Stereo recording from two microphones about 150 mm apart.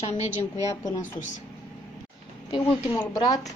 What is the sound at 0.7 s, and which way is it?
Speech, 25° left (ahead or behind).